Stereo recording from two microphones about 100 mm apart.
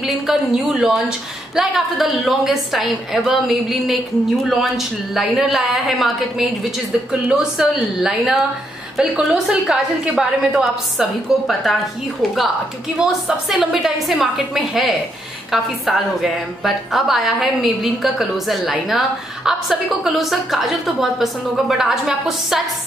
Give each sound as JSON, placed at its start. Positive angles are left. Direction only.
{"t": 0.0, "sound": "a woman's voice", "side_deg": 0}
{"t": 12.9, "sound": "a woman's voice", "side_deg": -10}